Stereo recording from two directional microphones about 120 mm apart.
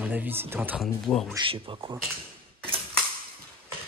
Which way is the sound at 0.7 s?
5° left (ahead or behind).